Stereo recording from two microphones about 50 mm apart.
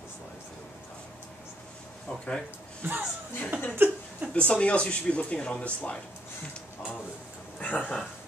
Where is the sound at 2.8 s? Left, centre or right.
Right.